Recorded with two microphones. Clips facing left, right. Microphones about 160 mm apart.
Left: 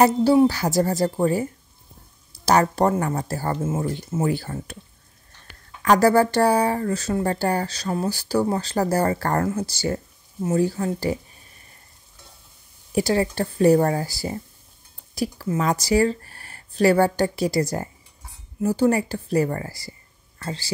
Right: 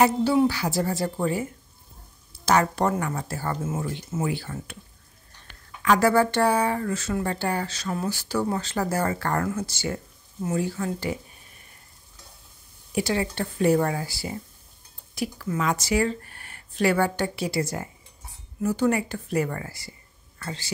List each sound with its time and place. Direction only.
0.0 s speech: 40° left (ahead or behind)
5.8 s speech: 40° left (ahead or behind)
12.9 s speech: 40° left (ahead or behind)